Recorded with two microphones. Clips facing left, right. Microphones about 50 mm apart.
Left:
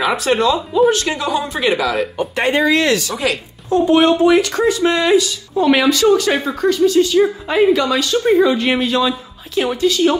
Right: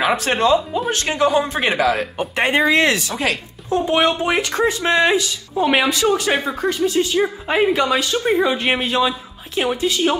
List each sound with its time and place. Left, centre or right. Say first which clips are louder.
0.0 s speech: left 2 dB; right
2.1 s speech: left 1 dB; right
5.6 s speech: left 4 dB; centre